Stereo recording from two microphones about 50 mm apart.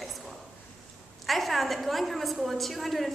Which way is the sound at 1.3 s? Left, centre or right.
Centre.